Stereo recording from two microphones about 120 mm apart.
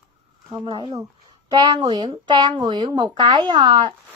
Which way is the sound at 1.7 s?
40° right (ahead or behind).